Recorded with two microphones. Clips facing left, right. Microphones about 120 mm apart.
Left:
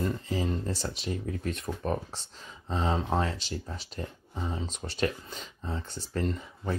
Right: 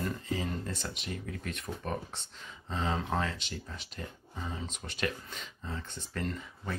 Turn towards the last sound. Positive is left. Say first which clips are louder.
# left 5 dB
turn(degrees=30)  # may be behind; listen again after turning